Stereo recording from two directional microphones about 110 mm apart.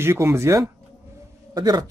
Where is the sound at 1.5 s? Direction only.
40° right (ahead or behind).